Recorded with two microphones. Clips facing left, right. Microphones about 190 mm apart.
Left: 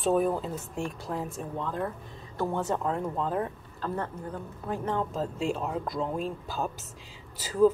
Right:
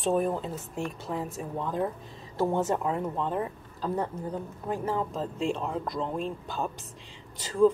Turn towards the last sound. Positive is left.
turn(degrees=5)  # may be behind; listen again after turning